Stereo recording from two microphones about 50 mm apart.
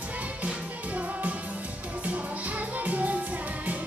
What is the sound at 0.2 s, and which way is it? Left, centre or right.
Music, right.